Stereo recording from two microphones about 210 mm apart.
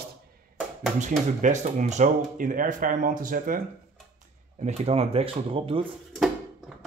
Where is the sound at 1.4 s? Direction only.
35° right (ahead or behind).